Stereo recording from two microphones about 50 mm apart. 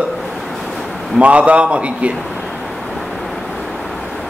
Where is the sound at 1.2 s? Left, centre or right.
Right.